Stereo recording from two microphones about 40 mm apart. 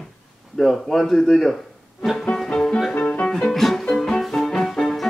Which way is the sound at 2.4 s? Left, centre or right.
Centre.